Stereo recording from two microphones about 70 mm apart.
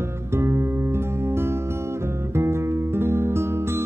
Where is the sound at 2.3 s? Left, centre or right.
Right.